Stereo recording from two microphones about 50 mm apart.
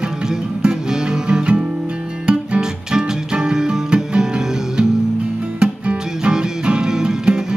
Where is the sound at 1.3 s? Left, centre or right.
Centre.